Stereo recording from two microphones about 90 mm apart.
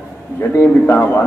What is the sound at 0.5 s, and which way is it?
Speech, 30° left (ahead or behind).